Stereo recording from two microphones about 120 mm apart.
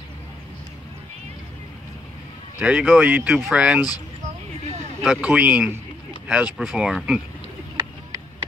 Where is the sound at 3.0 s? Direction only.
15° right (ahead or behind).